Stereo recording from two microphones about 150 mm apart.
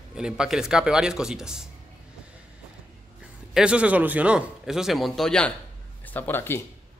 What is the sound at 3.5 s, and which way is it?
Speech, 5° right (ahead or behind).